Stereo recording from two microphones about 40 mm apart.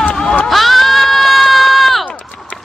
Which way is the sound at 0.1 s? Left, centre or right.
Centre.